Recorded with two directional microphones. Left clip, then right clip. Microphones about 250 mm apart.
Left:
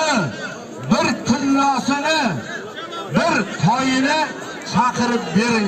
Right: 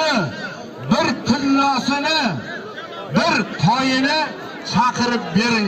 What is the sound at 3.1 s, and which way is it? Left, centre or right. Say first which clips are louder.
A man's voice: even; right.